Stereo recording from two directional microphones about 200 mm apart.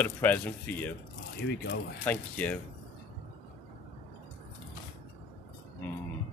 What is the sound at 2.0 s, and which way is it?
Speech, 5° left (ahead or behind).